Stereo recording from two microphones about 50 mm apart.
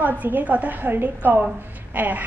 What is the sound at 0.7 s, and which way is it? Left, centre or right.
A woman's voice, right.